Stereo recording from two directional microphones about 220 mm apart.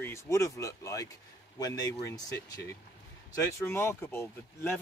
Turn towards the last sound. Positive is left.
turn(degrees=10)  # may be behind; listen again after turning